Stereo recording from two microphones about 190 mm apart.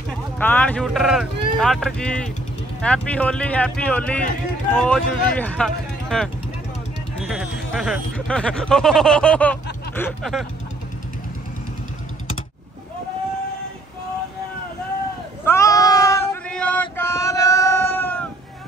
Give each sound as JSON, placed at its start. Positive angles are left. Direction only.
{"t": 0.4, "sound": "speech", "side_deg": 10}
{"t": 15.4, "sound": "a sound", "side_deg": 15}
{"t": 16.4, "sound": "male singing", "side_deg": 5}